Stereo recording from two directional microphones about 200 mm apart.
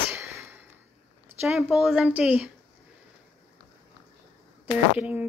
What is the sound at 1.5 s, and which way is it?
Speech, centre (ahead or behind).